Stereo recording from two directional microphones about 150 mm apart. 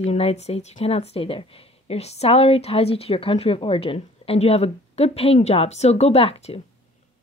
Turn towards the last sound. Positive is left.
turn(degrees=40)  # may be behind; listen again after turning